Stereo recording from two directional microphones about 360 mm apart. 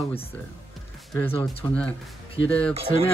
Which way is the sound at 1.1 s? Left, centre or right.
Centre.